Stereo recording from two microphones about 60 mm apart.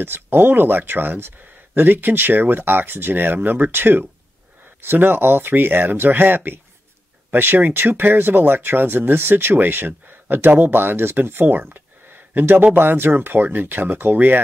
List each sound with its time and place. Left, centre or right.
0.0 s speech: right